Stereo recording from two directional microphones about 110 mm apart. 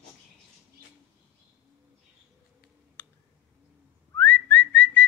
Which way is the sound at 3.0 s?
20° left (ahead or behind).